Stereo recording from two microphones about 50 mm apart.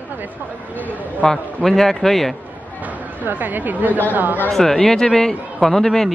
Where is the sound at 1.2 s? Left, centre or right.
Centre.